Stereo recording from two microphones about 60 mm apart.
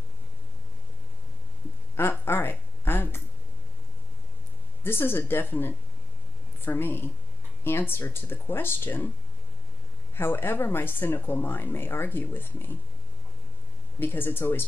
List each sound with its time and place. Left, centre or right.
2.0 s a sound: left
4.8 s speech: left
10.1 s speech: left
13.9 s speech: left